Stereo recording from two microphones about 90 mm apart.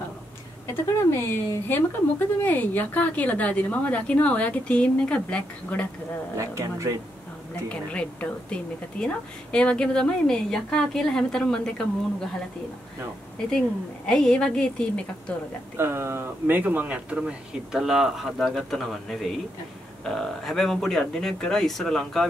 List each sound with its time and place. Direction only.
1.1 s speech: 25° left (ahead or behind)
6.3 s speech: 35° right (ahead or behind)
7.7 s speech: 15° left (ahead or behind)
14.0 s speech: 10° left (ahead or behind)
15.8 s speech: 30° right (ahead or behind); by 22.3 s 5° left (ahead or behind)